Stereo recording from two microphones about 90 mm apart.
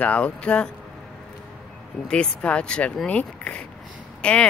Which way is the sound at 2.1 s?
10° left (ahead or behind).